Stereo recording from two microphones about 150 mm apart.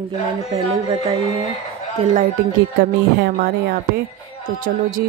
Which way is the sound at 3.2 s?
90° right.